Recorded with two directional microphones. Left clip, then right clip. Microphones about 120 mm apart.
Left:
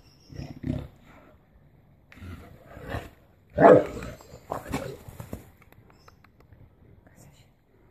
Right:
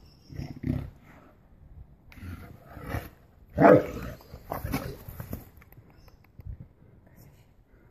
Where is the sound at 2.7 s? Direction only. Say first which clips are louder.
Left 1 dB; 5° right (ahead or behind).